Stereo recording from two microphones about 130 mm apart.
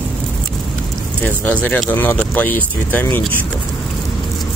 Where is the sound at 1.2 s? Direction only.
15° left (ahead or behind).